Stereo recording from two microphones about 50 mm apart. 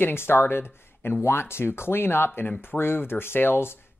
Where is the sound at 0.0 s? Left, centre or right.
Left.